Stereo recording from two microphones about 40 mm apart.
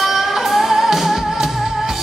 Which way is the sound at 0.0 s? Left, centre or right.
Centre.